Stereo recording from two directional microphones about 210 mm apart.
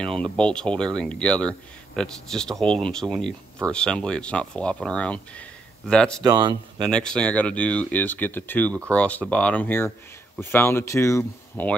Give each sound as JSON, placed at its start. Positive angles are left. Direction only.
{"t": 0.0, "sound": "speech", "side_deg": 5}
{"t": 6.2, "sound": "speech", "side_deg": -20}
{"t": 6.9, "sound": "speech", "side_deg": 5}